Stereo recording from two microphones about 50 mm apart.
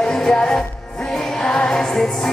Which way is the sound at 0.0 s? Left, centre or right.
Centre.